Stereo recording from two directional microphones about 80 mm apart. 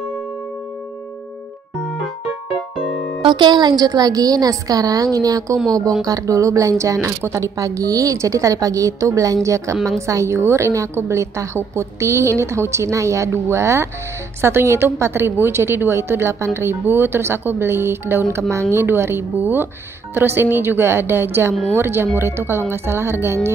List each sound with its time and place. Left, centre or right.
3.2 s a woman's voice: right